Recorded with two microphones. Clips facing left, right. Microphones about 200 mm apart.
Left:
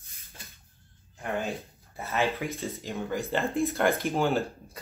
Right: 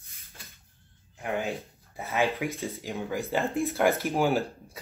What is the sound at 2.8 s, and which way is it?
Speech, 15° right (ahead or behind).